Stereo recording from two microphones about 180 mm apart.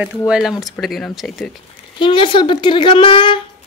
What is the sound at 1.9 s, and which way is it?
A woman's voice, 25° left (ahead or behind).